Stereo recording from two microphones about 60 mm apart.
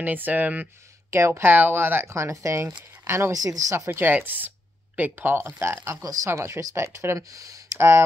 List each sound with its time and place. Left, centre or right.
0.0 s speech: right
1.1 s speech: right
1.4 s speech: right
3.3 s speech: right
3.7 s speech: right
4.1 s speech: right
7.2 s speech: right